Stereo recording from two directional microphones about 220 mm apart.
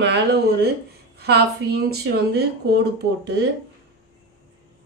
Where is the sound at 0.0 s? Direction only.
50° right (ahead or behind).